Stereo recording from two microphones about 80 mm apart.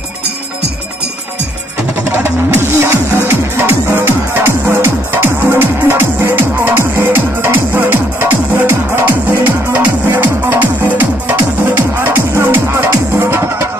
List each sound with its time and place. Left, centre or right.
2.0 s music: right